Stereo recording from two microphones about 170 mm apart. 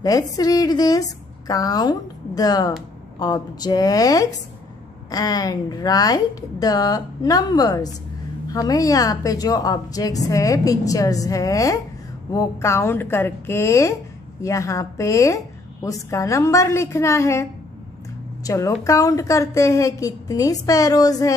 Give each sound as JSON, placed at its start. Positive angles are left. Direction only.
{"t": 0.0, "sound": "a woman's voice", "side_deg": 20}